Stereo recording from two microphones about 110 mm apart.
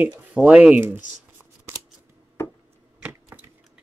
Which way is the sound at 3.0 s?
25° right (ahead or behind).